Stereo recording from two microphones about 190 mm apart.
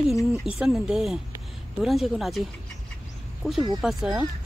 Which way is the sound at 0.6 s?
5° right (ahead or behind).